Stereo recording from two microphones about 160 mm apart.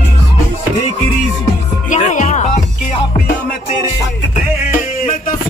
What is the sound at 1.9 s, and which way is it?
Music, 50° left (ahead or behind).